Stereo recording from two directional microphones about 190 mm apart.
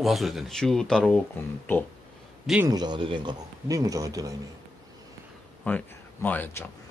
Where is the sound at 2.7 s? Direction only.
20° right (ahead or behind).